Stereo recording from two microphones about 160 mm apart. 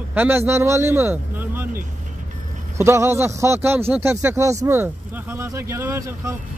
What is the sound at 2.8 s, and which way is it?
A man's voice, 15° right (ahead or behind).